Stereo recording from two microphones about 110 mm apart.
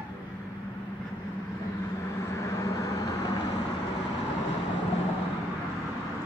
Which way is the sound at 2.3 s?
30° left (ahead or behind).